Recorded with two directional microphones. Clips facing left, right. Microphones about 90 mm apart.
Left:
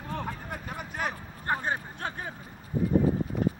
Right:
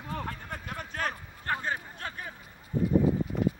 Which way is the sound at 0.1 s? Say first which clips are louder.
Left 1 dB; 5° left (ahead or behind).